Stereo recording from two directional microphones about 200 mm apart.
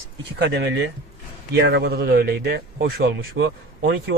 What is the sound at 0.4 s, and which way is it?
Speech, 60° right (ahead or behind).